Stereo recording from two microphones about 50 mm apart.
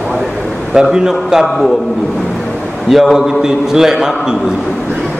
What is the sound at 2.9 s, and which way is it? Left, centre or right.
A man's voice, centre.